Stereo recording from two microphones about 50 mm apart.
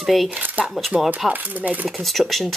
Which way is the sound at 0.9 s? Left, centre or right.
Centre.